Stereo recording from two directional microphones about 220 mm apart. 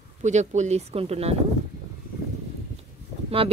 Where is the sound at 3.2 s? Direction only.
25° right (ahead or behind).